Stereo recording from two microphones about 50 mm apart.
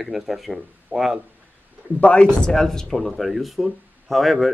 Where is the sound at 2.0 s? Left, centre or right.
Left.